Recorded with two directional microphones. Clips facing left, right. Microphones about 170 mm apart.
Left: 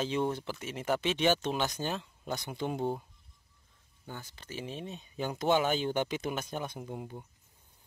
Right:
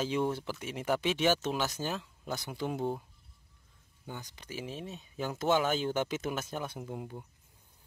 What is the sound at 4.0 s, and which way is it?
Speech, 15° right (ahead or behind).